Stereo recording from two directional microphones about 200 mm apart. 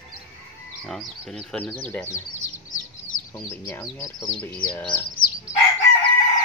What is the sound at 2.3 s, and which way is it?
Bird, 40° left (ahead or behind).